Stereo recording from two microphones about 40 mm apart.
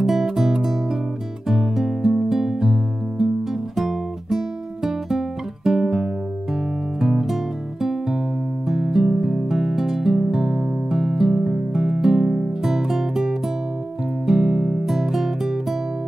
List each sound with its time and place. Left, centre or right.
0.0 s music: centre
3.7 s guitar: centre
7.0 s music: centre